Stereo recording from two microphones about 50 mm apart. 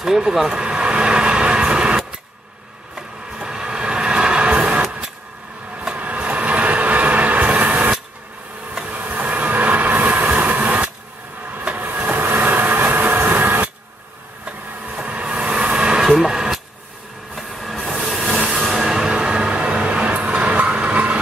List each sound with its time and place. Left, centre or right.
0.0 s vehicle: centre
5.9 s vehicle: right
8.8 s train: right
11.5 s vehicle: right
13.2 s printer: right
15.0 s vehicle: right
16.0 s radio: centre
17.4 s train: centre
18.6 s music: centre; by 21.2 s right